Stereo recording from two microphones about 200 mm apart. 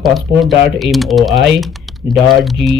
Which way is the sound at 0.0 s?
Centre (ahead or behind).